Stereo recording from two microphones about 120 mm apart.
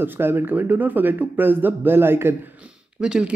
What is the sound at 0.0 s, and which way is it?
Speech, 20° right (ahead or behind).